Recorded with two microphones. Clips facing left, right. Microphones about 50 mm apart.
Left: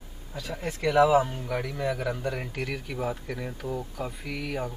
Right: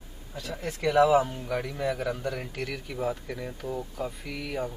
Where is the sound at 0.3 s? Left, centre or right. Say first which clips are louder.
Left 1 dB; centre.